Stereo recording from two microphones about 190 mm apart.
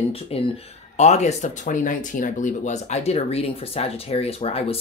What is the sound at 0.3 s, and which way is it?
Speech, 30° left (ahead or behind).